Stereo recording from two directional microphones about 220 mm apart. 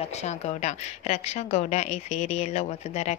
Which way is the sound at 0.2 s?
30° left (ahead or behind).